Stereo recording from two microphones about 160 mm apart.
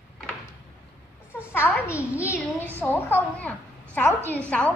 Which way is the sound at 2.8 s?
10° left (ahead or behind).